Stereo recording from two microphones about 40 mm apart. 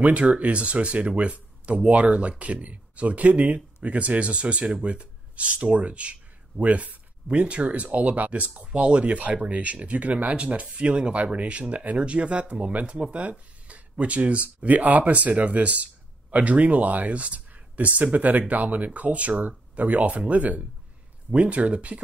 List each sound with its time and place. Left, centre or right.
0.0 s speech: right